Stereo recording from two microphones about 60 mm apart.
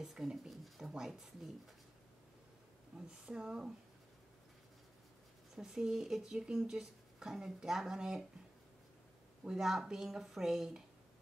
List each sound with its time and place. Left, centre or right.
0.0 s speech: centre
3.1 s speech: centre
5.6 s speech: centre
9.4 s speech: centre